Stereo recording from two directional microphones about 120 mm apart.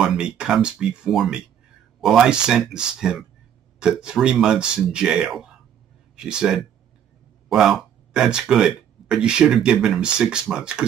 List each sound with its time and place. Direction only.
0.0 s speech: 5° right (ahead or behind)